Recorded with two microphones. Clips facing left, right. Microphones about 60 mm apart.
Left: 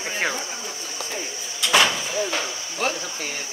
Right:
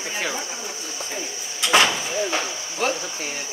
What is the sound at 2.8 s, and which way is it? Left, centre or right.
Speech, centre.